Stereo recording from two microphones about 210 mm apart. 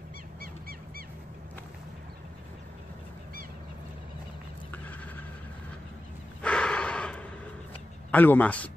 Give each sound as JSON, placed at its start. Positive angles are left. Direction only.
{"t": 0.4, "sound": "dog", "side_deg": -45}
{"t": 4.6, "sound": "a sound", "side_deg": 10}
{"t": 6.4, "sound": "snort", "side_deg": 5}
{"t": 8.1, "sound": "a man's voice", "side_deg": 10}